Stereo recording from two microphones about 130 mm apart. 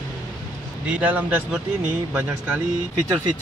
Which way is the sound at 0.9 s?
10° right (ahead or behind).